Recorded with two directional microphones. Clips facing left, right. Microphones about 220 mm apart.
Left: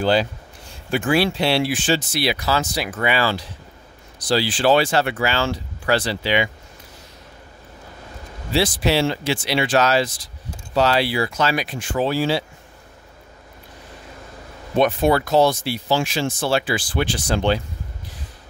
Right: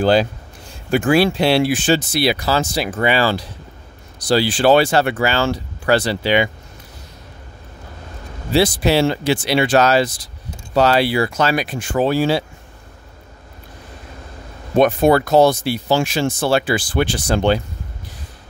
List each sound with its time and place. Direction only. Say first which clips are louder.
0.0 s speech: right 4 dB; 45° right (ahead or behind)
4.3 s speech: right 4 dB; 45° right (ahead or behind)
8.5 s speech: right 4 dB; 45° right (ahead or behind)
10.0 s speech: right 4 dB; 65° right (ahead or behind); by 12.4 s 50° right (ahead or behind)
14.8 s speech: right 4 dB; 45° right (ahead or behind)